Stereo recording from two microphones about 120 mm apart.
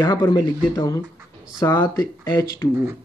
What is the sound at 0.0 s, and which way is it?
Speech, 35° left (ahead or behind).